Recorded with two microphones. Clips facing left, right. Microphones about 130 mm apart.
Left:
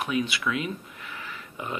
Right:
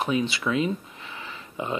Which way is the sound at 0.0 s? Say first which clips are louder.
Right 2 dB; 30° right (ahead or behind).